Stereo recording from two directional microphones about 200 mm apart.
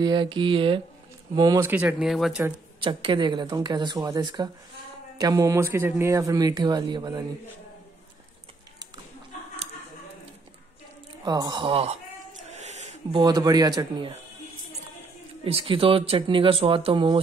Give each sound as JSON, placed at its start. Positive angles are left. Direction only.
{"t": 0.0, "sound": "speech", "side_deg": -20}
{"t": 2.8, "sound": "speech", "side_deg": -25}
{"t": 11.2, "sound": "speech", "side_deg": -20}
{"t": 12.4, "sound": "a sound", "side_deg": -35}
{"t": 13.2, "sound": "speech", "side_deg": -20}
{"t": 15.4, "sound": "speech", "side_deg": -25}